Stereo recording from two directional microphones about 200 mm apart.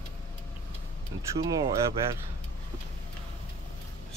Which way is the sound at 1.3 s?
20° right (ahead or behind).